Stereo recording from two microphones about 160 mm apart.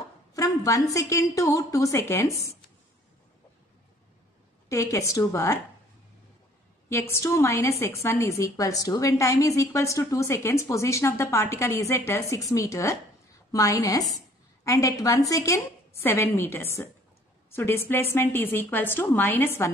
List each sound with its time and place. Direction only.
0.3 s a woman's voice: 20° left (ahead or behind)
4.6 s a woman's voice: 20° left (ahead or behind)
6.9 s a woman's voice: 15° left (ahead or behind)